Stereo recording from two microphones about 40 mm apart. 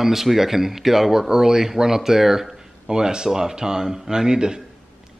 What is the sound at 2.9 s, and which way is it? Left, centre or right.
Speech, centre.